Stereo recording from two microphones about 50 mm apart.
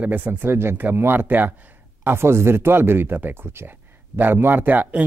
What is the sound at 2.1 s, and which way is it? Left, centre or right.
Speech, right.